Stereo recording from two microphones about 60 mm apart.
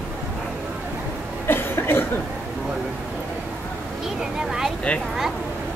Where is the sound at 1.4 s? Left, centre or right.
Left.